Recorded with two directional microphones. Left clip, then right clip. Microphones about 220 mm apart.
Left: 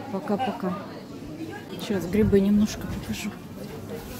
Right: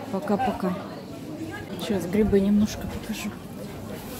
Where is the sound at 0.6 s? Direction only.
5° right (ahead or behind).